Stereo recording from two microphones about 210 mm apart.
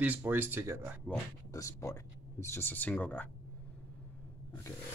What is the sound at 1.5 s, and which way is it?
Speech, 15° left (ahead or behind).